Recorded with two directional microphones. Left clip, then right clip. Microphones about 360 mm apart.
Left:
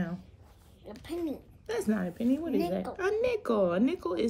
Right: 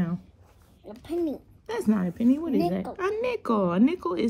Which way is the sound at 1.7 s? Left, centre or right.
Centre.